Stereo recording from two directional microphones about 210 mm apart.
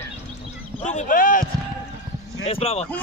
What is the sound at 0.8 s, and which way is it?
Speech, 35° left (ahead or behind).